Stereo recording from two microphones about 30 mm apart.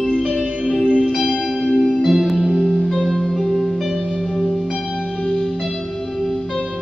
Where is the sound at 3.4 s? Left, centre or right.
Centre.